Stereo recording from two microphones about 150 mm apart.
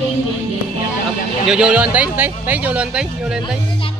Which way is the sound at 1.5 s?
5° right (ahead or behind).